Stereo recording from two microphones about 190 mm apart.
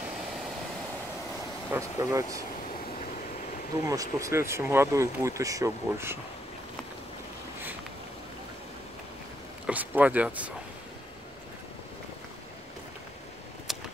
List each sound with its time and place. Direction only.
1.7 s speech: 15° right (ahead or behind)
3.8 s speech: 20° right (ahead or behind)
9.7 s speech: 10° right (ahead or behind)